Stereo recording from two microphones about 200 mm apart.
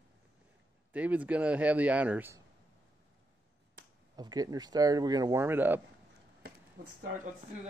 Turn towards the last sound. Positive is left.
turn(degrees=-50)  # may be behind; listen again after turning